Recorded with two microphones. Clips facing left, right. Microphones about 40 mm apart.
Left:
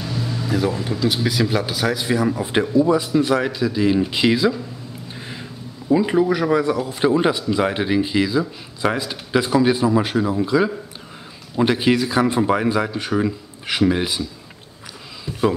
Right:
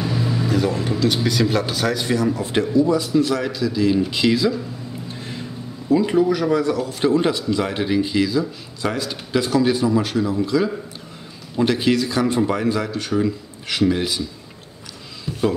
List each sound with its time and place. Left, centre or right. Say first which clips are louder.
0.0 s a sound: right 4 dB; centre
0.5 s speech: left 1 dB; centre
2.2 s speech: even; centre
5.9 s speech: even; centre